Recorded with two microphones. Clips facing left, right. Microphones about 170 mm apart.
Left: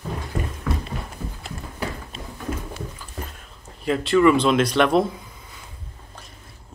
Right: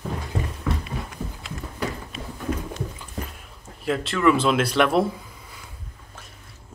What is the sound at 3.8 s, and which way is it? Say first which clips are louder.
A man's voice: left 4 dB; centre (ahead or behind).